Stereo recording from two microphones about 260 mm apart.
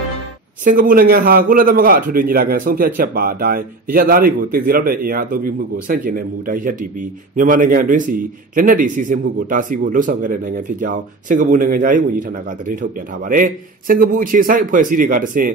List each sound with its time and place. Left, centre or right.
0.7 s a man's voice: right